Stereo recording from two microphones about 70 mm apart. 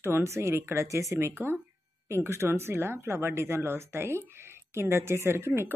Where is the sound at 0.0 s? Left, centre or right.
Right.